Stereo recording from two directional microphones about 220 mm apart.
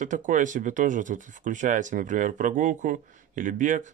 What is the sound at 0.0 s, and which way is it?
Speech, 35° right (ahead or behind).